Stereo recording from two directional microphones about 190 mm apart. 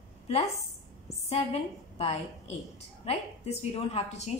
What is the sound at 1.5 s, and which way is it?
A woman's voice, 35° left (ahead or behind).